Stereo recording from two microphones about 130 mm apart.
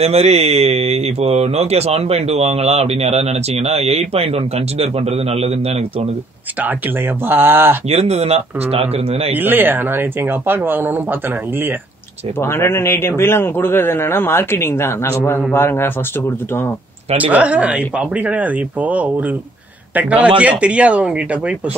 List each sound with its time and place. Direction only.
0.0 s speech: 55° right (ahead or behind)
7.2 s speech: 15° right (ahead or behind)
7.9 s speech: 55° right (ahead or behind)
9.3 s speech: 15° right (ahead or behind)
12.4 s a man's voice: 20° left (ahead or behind)
17.3 s a man's voice: 10° right (ahead or behind)